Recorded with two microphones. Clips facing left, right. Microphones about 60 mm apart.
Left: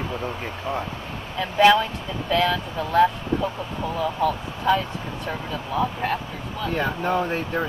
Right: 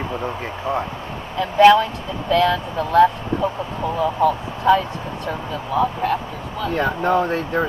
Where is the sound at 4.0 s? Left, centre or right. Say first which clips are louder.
Right 5 dB; centre.